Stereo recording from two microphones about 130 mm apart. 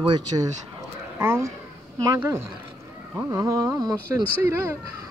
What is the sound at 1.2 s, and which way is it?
Carnatic music, 20° right (ahead or behind).